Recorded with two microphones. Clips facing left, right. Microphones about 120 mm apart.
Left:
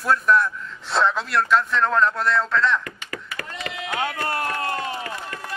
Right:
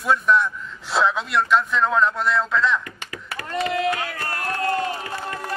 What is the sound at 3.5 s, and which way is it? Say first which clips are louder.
Speech: right 12 dB; 50° right (ahead or behind).